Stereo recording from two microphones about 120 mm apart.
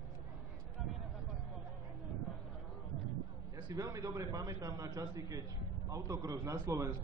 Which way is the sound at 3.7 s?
30° right (ahead or behind).